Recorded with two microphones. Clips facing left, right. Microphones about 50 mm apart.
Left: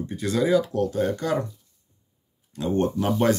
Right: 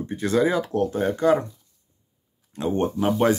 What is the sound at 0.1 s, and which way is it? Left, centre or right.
Speech, right.